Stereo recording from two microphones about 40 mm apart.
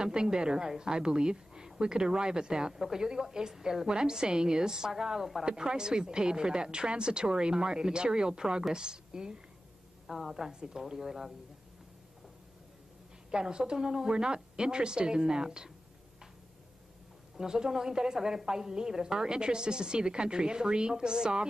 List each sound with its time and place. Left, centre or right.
0.0 s a woman's voice: centre
5.4 s a woman's voice: centre
10.0 s a woman's voice: centre
10.3 s a woman's voice: centre
13.3 s a woman's voice: right
17.4 s a woman's voice: centre